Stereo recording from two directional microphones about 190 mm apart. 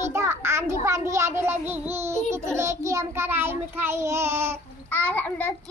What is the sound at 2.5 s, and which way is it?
Child singing, 15° right (ahead or behind).